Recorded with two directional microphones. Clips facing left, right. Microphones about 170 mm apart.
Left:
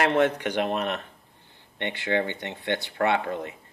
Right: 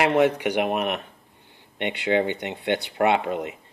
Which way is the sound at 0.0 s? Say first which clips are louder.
Right 3 dB; 10° right (ahead or behind).